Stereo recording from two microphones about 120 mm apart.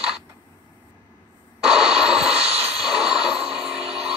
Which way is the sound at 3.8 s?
55° right (ahead or behind).